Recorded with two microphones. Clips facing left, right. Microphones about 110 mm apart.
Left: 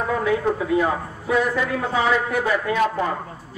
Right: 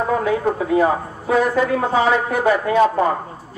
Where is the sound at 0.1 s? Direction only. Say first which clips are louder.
Even; 35° right (ahead or behind).